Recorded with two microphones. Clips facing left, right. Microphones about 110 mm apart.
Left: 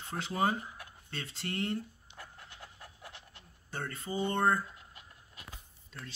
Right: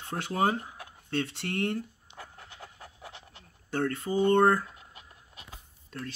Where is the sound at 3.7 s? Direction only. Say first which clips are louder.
Right 9 dB; 85° right.